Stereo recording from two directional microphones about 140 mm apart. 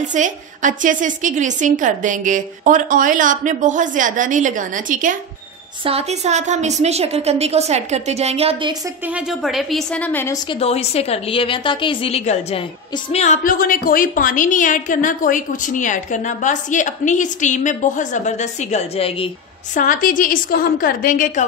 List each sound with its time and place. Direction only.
0.0 s a woman's voice: 60° right (ahead or behind)
5.9 s a woman's voice: 50° right (ahead or behind)
9.0 s a woman's voice: 5° right (ahead or behind); by 10.3 s 15° left (ahead or behind)
10.6 s a woman's voice: 50° left (ahead or behind)
19.7 s a woman's voice: 70° left (ahead or behind)